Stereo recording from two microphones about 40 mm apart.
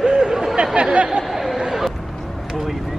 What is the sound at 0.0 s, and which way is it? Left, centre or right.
Chatter, centre.